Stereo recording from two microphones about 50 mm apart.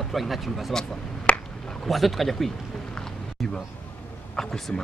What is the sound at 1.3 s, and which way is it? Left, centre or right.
Finger snapping, left.